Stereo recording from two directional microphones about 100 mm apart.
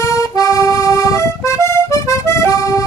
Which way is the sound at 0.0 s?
30° left (ahead or behind).